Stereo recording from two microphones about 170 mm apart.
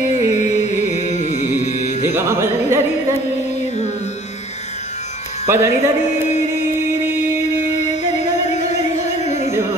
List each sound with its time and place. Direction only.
0.2 s music: 40° left (ahead or behind)
2.1 s music: 15° right (ahead or behind)
5.5 s music: 15° right (ahead or behind)
8.5 s music: 40° left (ahead or behind)